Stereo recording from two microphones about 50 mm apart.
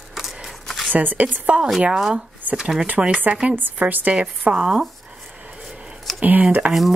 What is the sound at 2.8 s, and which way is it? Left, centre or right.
Speech, right.